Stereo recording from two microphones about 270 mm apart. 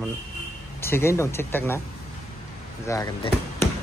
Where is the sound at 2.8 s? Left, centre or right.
Centre.